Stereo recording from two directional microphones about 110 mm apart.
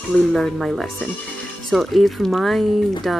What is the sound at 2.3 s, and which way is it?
Speech, centre (ahead or behind).